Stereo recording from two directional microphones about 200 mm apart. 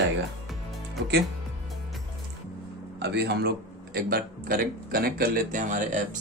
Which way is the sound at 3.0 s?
55° right (ahead or behind).